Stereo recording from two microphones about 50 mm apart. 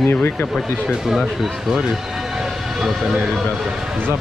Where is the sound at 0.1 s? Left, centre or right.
Left.